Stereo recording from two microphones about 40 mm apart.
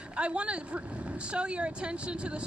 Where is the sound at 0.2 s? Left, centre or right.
Right.